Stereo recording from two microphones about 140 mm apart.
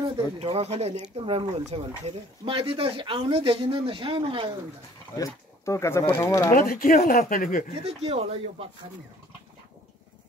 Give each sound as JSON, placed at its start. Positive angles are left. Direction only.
{"t": 0.4, "sound": "speech", "side_deg": -50}
{"t": 5.1, "sound": "speech", "side_deg": 25}
{"t": 6.5, "sound": "speech", "side_deg": 90}
{"t": 7.7, "sound": "speech", "side_deg": -45}